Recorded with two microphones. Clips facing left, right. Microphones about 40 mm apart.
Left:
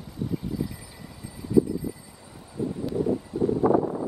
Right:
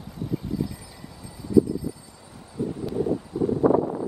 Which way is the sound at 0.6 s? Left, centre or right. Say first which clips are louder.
Right 2 dB; centre.